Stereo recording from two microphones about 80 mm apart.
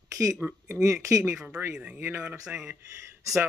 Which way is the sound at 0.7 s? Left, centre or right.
Right.